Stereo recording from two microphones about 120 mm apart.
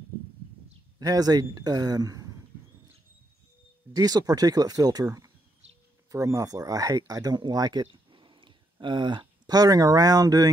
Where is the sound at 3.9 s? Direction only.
35° right (ahead or behind).